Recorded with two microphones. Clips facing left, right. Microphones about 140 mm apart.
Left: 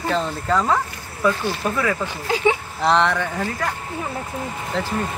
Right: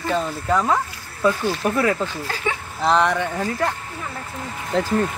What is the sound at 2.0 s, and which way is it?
Speech, 15° left (ahead or behind).